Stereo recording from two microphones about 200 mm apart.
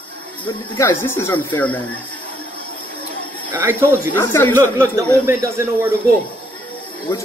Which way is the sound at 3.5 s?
10° right (ahead or behind).